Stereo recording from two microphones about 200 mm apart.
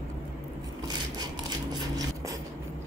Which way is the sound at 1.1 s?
20° right (ahead or behind).